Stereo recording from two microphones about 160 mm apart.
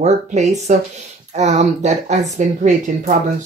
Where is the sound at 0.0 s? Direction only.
45° right (ahead or behind).